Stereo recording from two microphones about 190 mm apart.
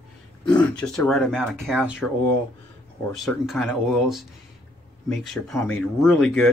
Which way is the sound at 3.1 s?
Centre (ahead or behind).